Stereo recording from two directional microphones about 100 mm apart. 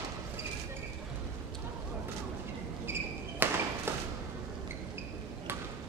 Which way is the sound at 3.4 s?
20° right (ahead or behind).